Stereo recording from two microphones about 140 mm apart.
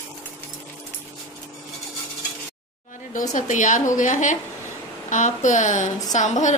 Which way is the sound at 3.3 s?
65° left (ahead or behind).